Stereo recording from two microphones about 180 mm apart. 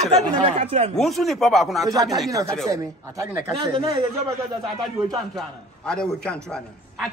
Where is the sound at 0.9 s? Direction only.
Centre (ahead or behind).